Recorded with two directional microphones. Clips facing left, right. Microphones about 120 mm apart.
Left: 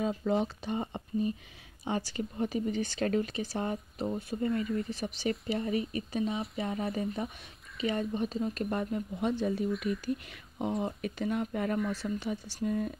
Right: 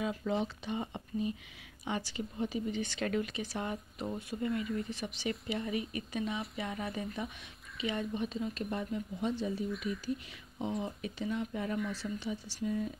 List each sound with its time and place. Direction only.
0.2 s speech: 45° left (ahead or behind)
9.7 s speech: centre (ahead or behind)
10.6 s speech: 55° left (ahead or behind)